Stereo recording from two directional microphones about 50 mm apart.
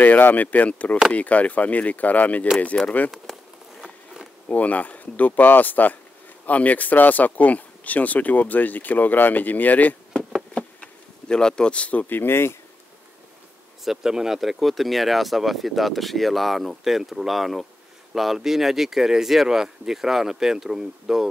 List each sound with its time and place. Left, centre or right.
0.0 s speech: left
2.8 s speech: centre
3.8 s insect: centre
4.5 s speech: left
10.5 s bee: centre
12.2 s speech: left
13.8 s speech: centre